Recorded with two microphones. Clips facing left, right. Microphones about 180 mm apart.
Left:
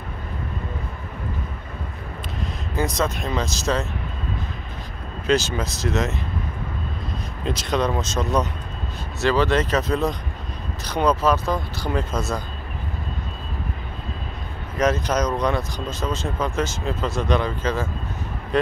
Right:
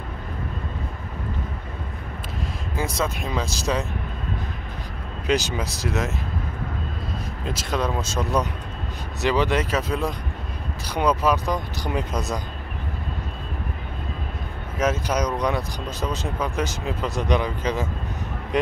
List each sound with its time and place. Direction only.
2.7 s speech: 10° right (ahead or behind)
5.2 s speech: 15° right (ahead or behind)
7.4 s speech: 5° right (ahead or behind)
14.8 s speech: 10° right (ahead or behind)